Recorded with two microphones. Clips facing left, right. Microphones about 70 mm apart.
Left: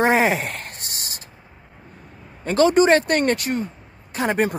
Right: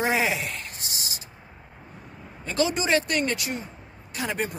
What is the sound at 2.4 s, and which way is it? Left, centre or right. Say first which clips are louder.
Speech: left 10 dB; left.